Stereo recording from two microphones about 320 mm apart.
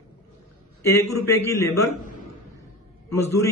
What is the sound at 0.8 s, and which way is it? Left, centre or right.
A man's voice, centre.